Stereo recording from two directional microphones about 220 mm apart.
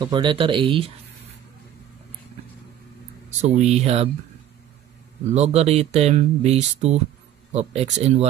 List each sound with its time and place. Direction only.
0.0 s speech: 20° right (ahead or behind)
3.3 s speech: 30° right (ahead or behind)
5.3 s speech: 30° right (ahead or behind)